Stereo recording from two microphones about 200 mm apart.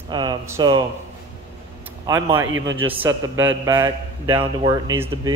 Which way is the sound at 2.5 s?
80° right.